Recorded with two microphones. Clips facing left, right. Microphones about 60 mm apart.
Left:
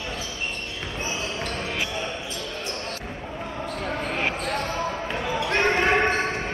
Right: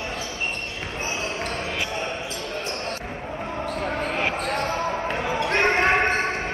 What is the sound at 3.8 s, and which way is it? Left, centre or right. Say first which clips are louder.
Basketball bounce: right 1 dB; centre.